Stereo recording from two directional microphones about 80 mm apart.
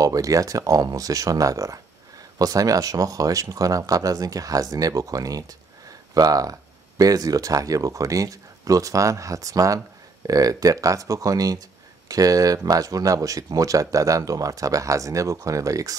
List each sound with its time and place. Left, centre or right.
0.0 s speech: right
5.9 s a sound: right
7.0 s speech: right